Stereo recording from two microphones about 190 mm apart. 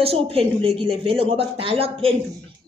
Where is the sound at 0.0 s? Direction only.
30° right (ahead or behind).